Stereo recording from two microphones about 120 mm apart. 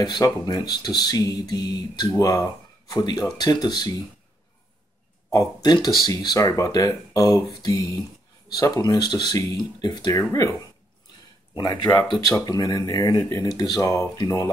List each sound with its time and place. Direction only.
0.0 s speech: 35° left (ahead or behind)
5.3 s speech: 35° left (ahead or behind)
7.5 s a sound: 30° left (ahead or behind)
8.5 s speech: 30° left (ahead or behind)
11.5 s speech: 40° left (ahead or behind)